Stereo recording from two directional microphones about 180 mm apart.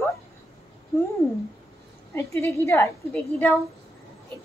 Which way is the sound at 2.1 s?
15° left (ahead or behind).